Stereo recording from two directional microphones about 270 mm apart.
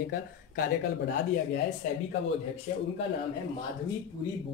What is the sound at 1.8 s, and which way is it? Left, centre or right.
Speech, left.